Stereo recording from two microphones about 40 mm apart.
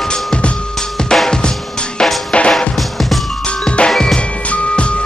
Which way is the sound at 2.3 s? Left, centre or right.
Left.